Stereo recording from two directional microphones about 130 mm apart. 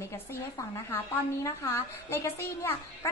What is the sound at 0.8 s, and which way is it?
A woman's voice, 20° left (ahead or behind).